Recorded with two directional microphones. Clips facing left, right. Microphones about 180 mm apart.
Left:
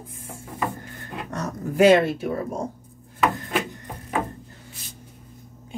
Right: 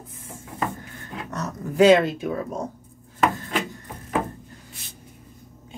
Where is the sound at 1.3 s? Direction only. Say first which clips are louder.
Even; 10° left (ahead or behind).